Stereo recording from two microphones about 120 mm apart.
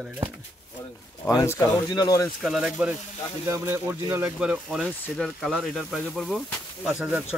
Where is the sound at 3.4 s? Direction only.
25° right (ahead or behind).